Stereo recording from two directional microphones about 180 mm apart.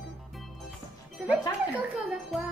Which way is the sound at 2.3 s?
Centre (ahead or behind).